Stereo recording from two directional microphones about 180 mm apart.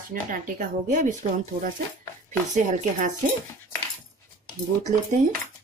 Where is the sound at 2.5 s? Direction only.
40° right (ahead or behind).